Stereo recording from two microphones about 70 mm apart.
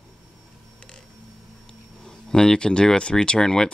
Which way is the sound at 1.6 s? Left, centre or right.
Centre.